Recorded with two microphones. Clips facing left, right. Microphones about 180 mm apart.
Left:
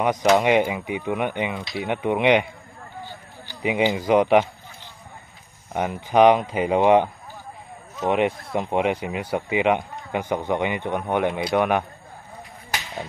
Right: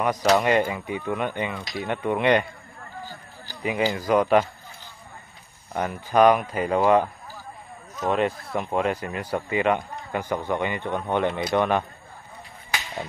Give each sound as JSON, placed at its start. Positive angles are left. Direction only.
{"t": 0.0, "sound": "speech", "side_deg": 20}
{"t": 3.0, "sound": "a sound", "side_deg": -40}
{"t": 3.6, "sound": "speech", "side_deg": 15}
{"t": 5.7, "sound": "speech", "side_deg": 15}